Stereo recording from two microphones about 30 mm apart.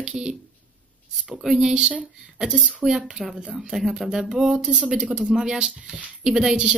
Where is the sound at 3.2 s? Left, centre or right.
Centre.